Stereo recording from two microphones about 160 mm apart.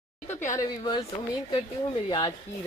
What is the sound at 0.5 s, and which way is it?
Speech, 25° left (ahead or behind).